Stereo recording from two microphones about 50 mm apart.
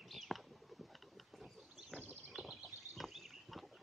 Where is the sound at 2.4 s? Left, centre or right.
Right.